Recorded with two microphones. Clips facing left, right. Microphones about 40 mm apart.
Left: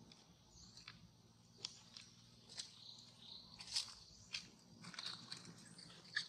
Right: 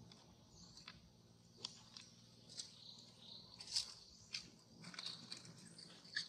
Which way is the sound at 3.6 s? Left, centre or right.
Left.